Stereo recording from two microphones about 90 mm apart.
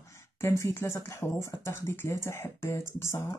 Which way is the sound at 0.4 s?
30° left (ahead or behind).